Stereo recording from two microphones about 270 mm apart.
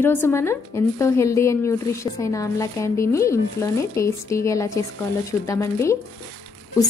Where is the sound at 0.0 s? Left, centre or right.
Centre.